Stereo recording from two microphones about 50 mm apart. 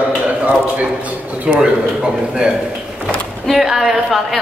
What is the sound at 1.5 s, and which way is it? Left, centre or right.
A man's voice, centre.